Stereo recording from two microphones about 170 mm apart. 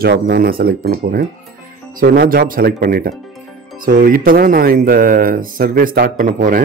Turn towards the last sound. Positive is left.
turn(degrees=-55)  # may be behind; listen again after turning